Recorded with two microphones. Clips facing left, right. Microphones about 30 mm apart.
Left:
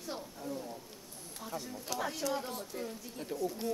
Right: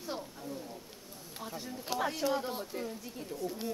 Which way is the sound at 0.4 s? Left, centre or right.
Centre.